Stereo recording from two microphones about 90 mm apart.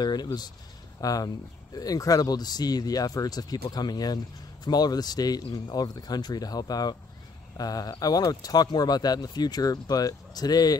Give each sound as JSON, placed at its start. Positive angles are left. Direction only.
{"t": 0.0, "sound": "speech", "side_deg": 50}